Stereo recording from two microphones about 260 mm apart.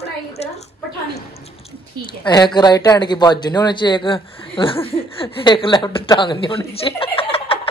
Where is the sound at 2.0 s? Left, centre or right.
Centre.